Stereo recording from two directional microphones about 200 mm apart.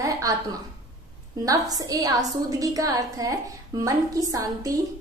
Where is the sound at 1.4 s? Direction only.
15° right (ahead or behind).